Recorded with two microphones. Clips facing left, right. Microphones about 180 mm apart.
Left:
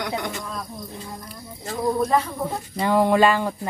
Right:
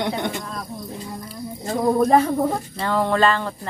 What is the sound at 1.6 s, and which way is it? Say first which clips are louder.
Speech: right 4 dB; 55° right (ahead or behind).